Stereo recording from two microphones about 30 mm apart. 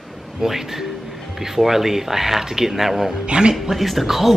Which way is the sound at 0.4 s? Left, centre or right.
Centre.